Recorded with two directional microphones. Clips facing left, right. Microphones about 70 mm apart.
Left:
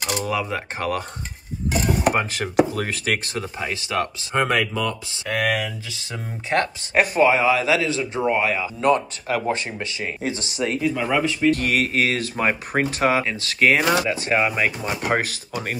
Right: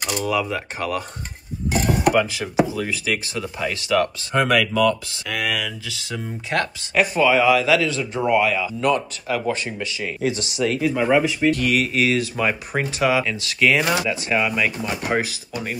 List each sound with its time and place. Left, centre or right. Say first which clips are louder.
0.3 s speech: right 2 dB; left
2.3 s speech: left 1 dB; left
3.5 s speech: right 5 dB; left
5.3 s speech: left 3 dB; left
11.0 s speech: right 3 dB; centre
11.5 s speech: right 1 dB; left